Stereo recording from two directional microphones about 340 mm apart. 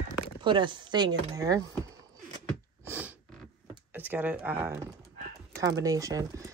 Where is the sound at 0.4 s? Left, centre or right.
Centre.